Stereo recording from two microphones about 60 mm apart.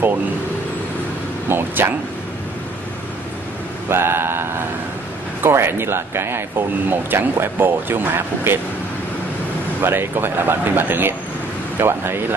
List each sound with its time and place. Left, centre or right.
1.5 s speech: right
3.9 s speech: right
5.5 s speech: right
9.8 s speech: right